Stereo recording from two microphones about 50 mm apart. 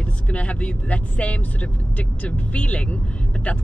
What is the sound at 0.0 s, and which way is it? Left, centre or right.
Speech, left.